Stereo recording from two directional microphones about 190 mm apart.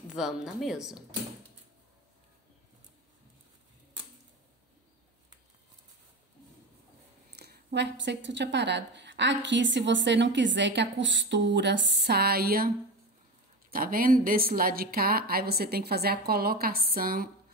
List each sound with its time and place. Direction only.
0.1 s speech: centre (ahead or behind)
7.3 s a woman's voice: 60° right (ahead or behind)